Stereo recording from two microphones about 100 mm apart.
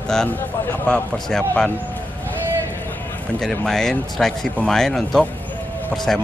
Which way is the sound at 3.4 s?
5° left (ahead or behind).